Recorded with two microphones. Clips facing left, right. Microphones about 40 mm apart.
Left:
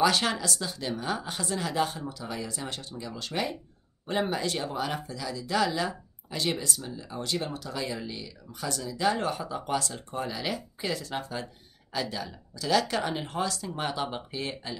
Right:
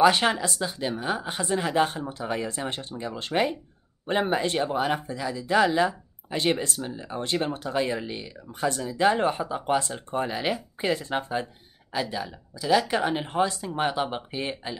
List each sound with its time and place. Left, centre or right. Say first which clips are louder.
0.0 s a woman's voice: right 5 dB; right
11.9 s a woman's voice: right 3 dB; centre